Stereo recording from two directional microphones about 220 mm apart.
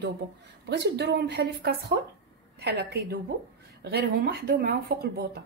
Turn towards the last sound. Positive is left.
turn(degrees=-45)  # may be behind; listen again after turning